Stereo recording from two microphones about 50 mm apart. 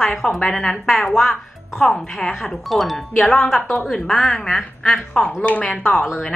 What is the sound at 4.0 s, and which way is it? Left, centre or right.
A woman's voice, centre.